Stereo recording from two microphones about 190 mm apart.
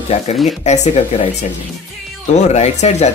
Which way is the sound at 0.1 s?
35° left (ahead or behind).